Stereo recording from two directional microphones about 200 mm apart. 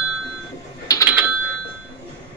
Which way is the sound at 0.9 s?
15° left (ahead or behind).